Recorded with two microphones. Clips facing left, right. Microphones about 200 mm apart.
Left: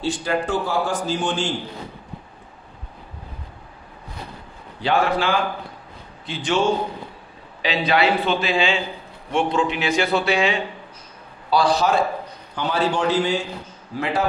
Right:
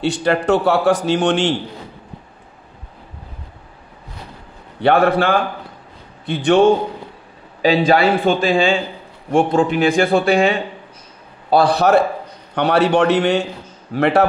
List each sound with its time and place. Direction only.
0.0 s a man's voice: 70° right (ahead or behind)
4.8 s a man's voice: 60° right (ahead or behind)
7.6 s a man's voice: 45° right (ahead or behind)
11.5 s a man's voice: 60° right (ahead or behind)